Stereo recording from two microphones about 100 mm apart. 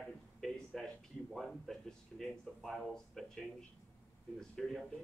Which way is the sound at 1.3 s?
Centre (ahead or behind).